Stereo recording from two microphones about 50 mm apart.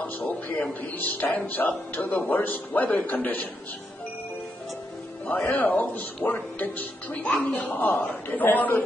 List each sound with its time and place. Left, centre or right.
0.9 s speech: left
5.5 s speech: left